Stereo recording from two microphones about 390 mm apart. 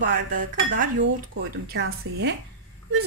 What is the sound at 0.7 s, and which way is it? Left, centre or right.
A woman's voice, right.